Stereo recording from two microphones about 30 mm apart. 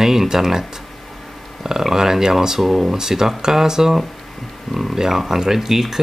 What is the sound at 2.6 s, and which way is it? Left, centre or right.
Speech, centre.